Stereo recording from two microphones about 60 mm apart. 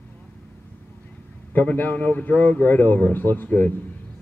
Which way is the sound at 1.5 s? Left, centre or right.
Left.